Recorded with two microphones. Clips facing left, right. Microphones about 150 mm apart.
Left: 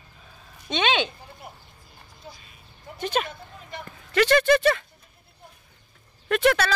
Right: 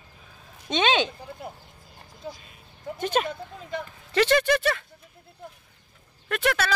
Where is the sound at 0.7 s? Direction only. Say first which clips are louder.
Right 1 dB; 40° right (ahead or behind).